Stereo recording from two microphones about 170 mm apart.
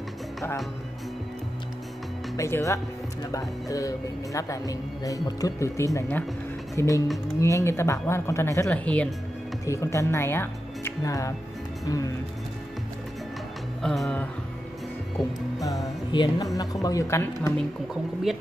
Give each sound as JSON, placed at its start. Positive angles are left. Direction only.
{"t": 2.3, "sound": "speech", "side_deg": 15}
{"t": 9.7, "sound": "speech", "side_deg": 15}
{"t": 13.8, "sound": "music", "side_deg": 0}
{"t": 16.1, "sound": "speech", "side_deg": 25}
{"t": 18.3, "sound": "music", "side_deg": 0}